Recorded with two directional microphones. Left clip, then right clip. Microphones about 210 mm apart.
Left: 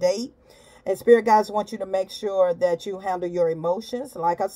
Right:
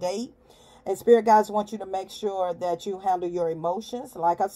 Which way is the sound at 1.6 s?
20° right (ahead or behind).